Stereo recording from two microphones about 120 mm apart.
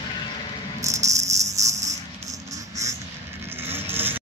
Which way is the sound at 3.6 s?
20° right (ahead or behind).